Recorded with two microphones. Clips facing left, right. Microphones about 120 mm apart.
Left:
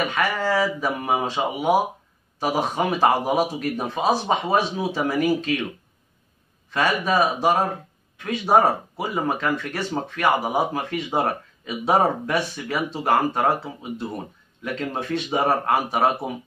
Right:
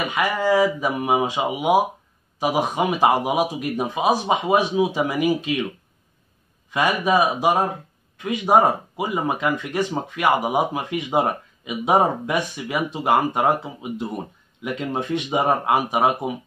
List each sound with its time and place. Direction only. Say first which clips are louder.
0.0 s speech: right 1 dB; 15° right (ahead or behind)
6.7 s speech: right 2 dB; 15° right (ahead or behind)